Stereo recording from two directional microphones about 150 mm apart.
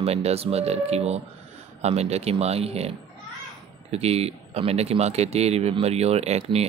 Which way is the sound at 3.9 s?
45° right (ahead or behind).